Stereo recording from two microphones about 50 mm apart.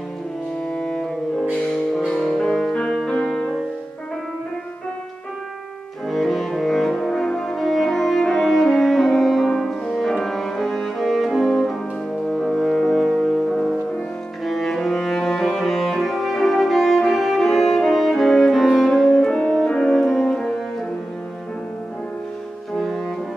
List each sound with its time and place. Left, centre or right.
0.7 s music: centre
2.2 s music: centre
6.0 s music: centre
22.8 s music: centre